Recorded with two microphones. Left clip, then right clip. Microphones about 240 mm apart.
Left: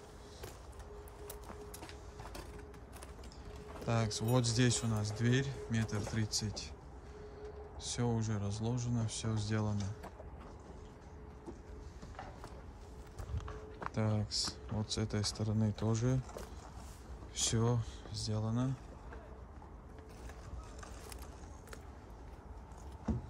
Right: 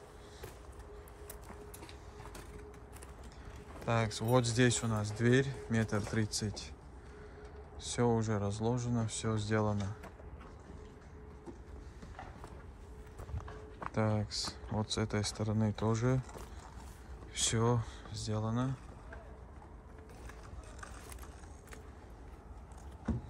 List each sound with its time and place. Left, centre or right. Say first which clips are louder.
3.8 s a man's voice: right 3 dB; centre
7.9 s speech: right 7 dB; centre
13.5 s a man's voice: even; centre
17.3 s speech: right 3 dB; centre
23.1 s music: right 1 dB; left